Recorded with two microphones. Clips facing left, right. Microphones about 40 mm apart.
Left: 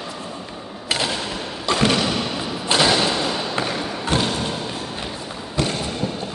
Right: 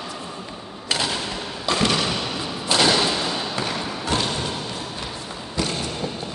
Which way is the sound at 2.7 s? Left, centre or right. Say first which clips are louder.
Left 1 dB; centre.